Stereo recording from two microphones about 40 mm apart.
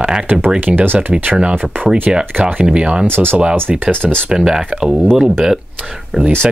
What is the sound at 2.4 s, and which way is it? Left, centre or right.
Speech, right.